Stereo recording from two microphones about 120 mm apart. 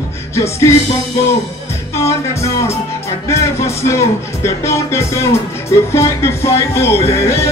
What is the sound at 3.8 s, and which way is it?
Speech, 25° left (ahead or behind).